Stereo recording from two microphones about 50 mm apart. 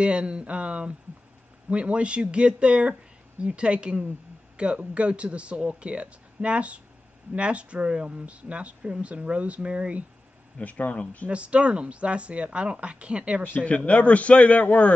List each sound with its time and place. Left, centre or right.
0.0 s speech: right
10.6 s speech: left
11.2 s speech: right
13.5 s a man's voice: left